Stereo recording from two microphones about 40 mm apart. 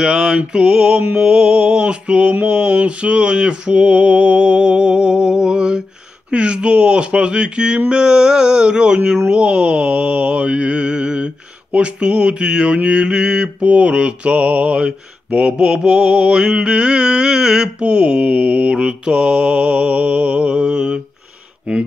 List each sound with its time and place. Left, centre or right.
0.0 s mantra: centre
13.6 s mantra: right